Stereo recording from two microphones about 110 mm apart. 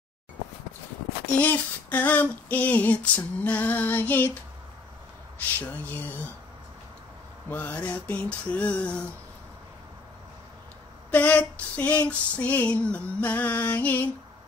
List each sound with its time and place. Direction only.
1.4 s female singing: 15° left (ahead or behind)
5.6 s female singing: 15° left (ahead or behind)
7.4 s female singing: 15° left (ahead or behind)
11.1 s female singing: 15° left (ahead or behind)